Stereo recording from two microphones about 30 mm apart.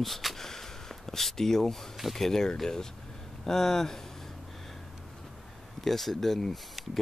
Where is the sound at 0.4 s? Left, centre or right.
Centre.